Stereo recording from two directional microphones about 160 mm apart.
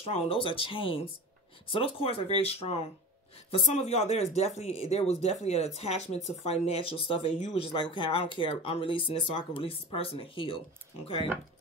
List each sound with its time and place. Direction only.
0.0 s speech: 35° left (ahead or behind)